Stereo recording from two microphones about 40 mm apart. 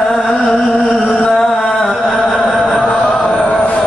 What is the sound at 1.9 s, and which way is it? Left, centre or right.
Music, centre.